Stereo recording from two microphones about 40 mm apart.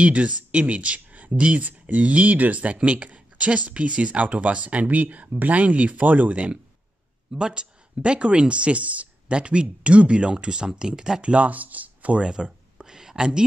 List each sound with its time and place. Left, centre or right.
0.0 s speech: right
7.3 s a woman's voice: right
11.2 s speech: right
12.2 s speech: right